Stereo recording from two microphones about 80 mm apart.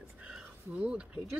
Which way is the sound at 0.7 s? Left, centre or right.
Centre.